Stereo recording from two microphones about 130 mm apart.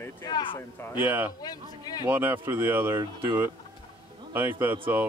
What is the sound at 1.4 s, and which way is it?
Speech, 30° left (ahead or behind).